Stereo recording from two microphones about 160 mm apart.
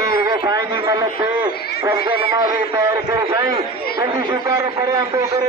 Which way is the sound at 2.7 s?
25° right (ahead or behind).